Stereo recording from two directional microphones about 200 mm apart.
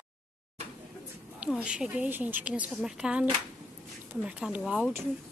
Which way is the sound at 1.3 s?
5° right (ahead or behind).